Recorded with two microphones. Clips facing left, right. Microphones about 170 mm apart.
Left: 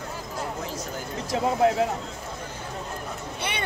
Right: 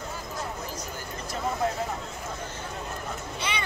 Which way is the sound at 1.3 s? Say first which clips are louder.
Left 7 dB; 90° left.